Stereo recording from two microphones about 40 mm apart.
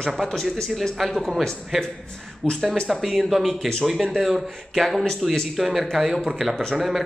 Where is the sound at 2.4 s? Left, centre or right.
Centre.